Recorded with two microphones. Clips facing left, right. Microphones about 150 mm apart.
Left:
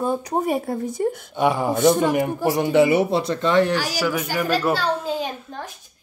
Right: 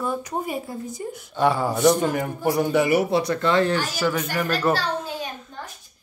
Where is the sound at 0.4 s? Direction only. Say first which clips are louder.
Left 6 dB; 60° left (ahead or behind).